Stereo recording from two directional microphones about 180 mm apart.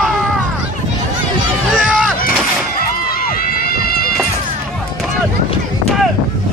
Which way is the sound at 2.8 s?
55° left (ahead or behind).